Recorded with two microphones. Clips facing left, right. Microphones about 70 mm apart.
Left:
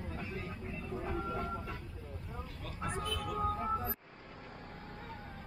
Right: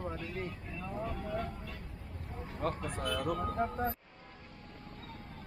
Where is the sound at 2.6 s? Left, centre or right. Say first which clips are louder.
Right 4 dB; right.